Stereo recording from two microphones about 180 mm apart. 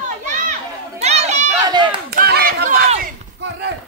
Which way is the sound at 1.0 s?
40° right (ahead or behind).